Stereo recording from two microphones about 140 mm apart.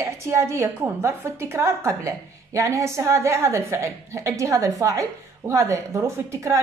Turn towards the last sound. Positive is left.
turn(degrees=-20)  # may be behind; listen again after turning